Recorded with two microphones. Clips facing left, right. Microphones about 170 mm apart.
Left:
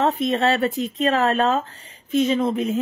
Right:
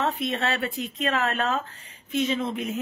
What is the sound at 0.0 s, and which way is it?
Speech, 40° left (ahead or behind).